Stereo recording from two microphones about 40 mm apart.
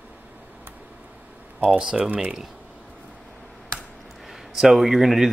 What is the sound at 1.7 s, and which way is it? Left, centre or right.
Speech, right.